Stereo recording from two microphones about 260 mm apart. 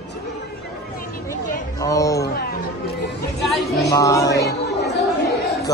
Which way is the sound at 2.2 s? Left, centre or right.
Left.